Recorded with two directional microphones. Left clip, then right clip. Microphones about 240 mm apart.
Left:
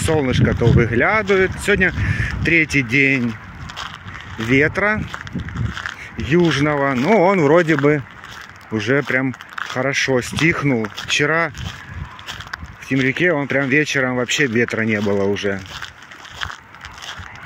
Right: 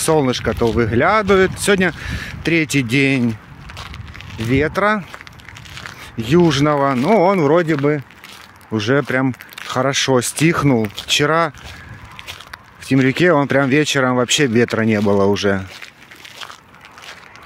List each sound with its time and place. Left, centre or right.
0.0 s speech: centre
3.3 s a sound: centre
4.5 s speech: centre
6.2 s speech: centre
7.3 s speech: centre
8.7 s speech: centre
12.8 s speech: right